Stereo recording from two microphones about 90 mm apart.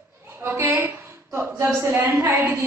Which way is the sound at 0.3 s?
25° right (ahead or behind).